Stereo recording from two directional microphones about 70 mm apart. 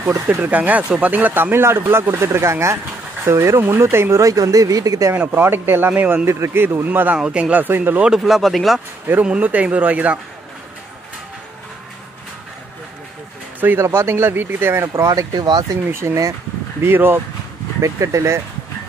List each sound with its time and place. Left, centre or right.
0.0 s speech: right
5.1 s speech: right
6.2 s speech: right
7.2 s speech: centre
7.6 s speech: right
8.0 s speech: centre
9.2 s speech: centre
13.6 s speech: right
13.8 s speech: right
15.0 s speech: right
15.3 s speech: right
15.9 s speech: right
17.8 s speech: right